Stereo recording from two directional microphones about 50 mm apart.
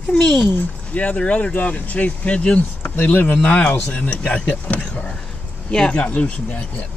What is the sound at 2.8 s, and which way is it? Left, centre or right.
Speech, left.